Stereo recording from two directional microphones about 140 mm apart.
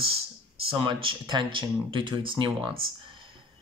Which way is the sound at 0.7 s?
35° right (ahead or behind).